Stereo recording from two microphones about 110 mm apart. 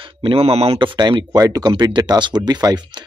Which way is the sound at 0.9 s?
40° right (ahead or behind).